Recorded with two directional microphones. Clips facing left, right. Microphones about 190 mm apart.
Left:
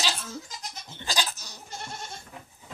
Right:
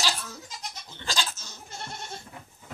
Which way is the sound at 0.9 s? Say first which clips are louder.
Left 1 dB; 20° left (ahead or behind).